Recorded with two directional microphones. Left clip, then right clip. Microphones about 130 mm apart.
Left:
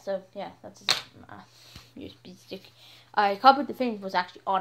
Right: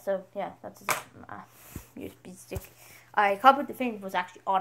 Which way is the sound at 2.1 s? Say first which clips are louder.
Right 1 dB; 45° right (ahead or behind).